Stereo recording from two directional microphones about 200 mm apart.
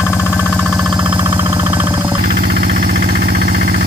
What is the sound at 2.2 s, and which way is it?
Vehicle, 50° right (ahead or behind).